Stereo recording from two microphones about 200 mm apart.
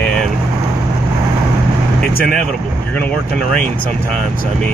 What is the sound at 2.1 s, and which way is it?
Speech, 45° left (ahead or behind).